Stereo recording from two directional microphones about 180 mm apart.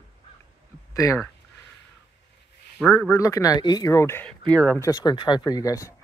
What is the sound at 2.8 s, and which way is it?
Speech, 10° left (ahead or behind).